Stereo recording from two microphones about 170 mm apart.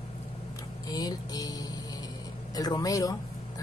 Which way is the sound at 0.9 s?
20° left (ahead or behind).